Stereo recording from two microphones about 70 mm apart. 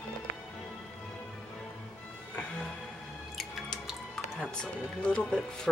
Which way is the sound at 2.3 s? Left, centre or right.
Centre.